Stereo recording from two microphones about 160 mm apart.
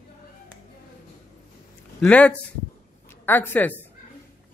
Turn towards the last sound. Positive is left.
turn(degrees=10)  # may be behind; listen again after turning